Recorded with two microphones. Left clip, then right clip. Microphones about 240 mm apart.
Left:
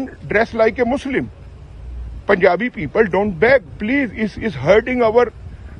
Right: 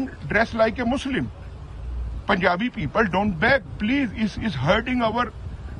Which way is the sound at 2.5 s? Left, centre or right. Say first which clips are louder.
Left 6 dB; centre.